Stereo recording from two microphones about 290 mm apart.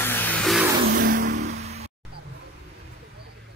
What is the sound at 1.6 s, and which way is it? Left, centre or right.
Music, right.